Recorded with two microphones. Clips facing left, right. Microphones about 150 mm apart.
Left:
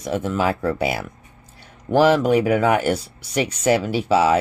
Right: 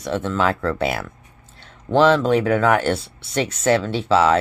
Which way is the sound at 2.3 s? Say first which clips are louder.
Even; 10° left (ahead or behind).